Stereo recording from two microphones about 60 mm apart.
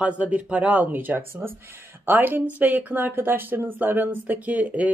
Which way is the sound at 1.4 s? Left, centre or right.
Right.